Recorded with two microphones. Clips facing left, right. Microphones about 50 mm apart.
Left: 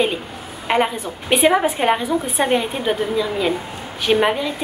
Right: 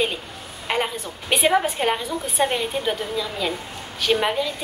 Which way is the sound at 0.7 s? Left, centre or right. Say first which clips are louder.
Left 6 dB; centre.